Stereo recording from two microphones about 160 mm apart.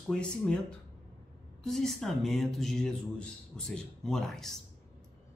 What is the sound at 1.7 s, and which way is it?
Speech, 5° left (ahead or behind).